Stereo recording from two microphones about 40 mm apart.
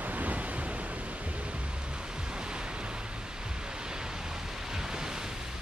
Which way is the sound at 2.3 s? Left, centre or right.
Right.